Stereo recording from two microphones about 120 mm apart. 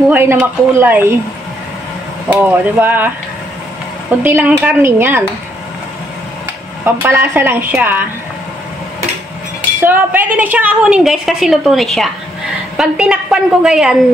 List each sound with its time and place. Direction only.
0.1 s speech: 20° right (ahead or behind)
2.2 s a woman's voice: 15° right (ahead or behind)
4.2 s a woman's voice: 15° right (ahead or behind)
6.8 s a woman's voice: 20° right (ahead or behind)
9.8 s a woman's voice: 15° right (ahead or behind); by 12.1 s centre (ahead or behind)
12.7 s a woman's voice: 10° right (ahead or behind)